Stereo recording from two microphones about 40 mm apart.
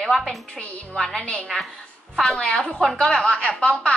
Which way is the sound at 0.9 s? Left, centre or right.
Centre.